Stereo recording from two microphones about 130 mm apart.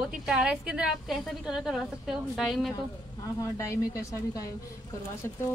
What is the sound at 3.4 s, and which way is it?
Speech, 25° left (ahead or behind).